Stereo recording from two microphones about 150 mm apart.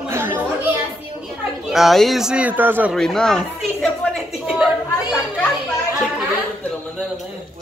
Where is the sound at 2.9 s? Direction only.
5° left (ahead or behind).